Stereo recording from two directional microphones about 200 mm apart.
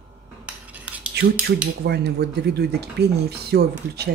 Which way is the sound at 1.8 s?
55° right (ahead or behind).